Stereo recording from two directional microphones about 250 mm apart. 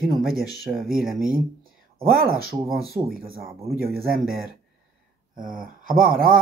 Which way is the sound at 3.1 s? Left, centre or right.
Right.